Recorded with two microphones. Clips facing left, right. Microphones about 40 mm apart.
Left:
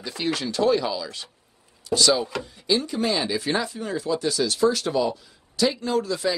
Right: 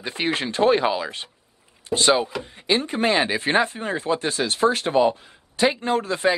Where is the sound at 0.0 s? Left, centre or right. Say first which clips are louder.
Right 2 dB; right.